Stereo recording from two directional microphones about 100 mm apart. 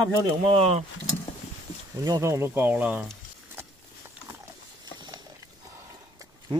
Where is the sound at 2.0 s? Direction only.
35° right (ahead or behind); by 3.1 s 15° right (ahead or behind).